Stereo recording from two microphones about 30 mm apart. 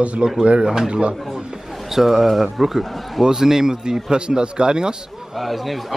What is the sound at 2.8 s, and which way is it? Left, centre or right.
Speech, centre.